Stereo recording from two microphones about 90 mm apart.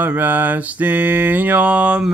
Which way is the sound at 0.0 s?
20° right (ahead or behind).